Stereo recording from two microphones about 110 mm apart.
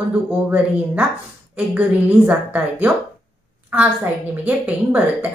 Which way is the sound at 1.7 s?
15° right (ahead or behind).